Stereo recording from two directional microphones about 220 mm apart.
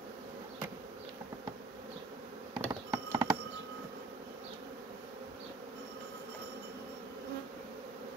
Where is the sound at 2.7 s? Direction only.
15° right (ahead or behind).